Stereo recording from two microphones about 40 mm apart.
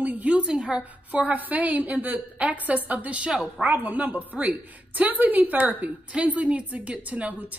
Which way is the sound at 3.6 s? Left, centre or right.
Right.